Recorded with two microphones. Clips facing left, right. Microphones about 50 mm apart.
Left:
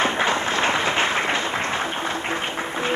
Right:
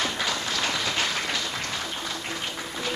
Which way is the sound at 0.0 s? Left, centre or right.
Left.